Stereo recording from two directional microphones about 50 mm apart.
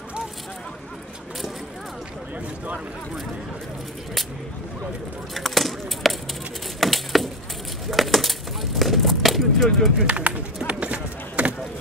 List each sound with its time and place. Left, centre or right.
5.3 s chop: centre
6.8 s wood: centre
7.9 s bird: centre
10.0 s speech: right
10.7 s a sound: right